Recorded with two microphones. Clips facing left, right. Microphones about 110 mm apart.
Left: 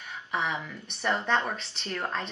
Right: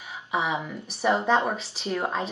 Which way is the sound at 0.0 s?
5° right (ahead or behind).